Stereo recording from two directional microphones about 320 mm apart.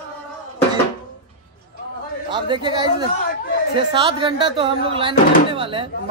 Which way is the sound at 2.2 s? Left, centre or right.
Centre.